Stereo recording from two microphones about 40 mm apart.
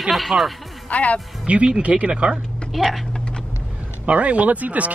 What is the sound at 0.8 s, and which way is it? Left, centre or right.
Speech, left.